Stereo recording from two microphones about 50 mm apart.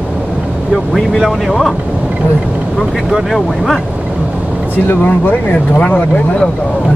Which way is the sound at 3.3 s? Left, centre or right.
Centre.